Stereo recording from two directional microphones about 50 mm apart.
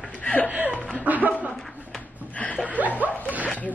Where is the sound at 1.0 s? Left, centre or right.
Right.